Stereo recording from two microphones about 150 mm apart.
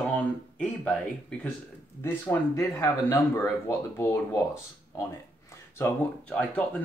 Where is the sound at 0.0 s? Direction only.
10° left (ahead or behind).